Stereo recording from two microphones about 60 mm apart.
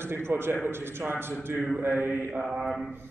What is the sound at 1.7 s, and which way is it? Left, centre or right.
Mantra, right.